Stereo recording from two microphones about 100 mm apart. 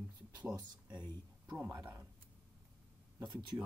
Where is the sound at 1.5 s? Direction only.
20° right (ahead or behind).